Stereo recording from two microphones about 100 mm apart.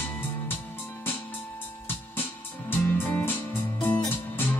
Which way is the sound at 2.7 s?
20° left (ahead or behind).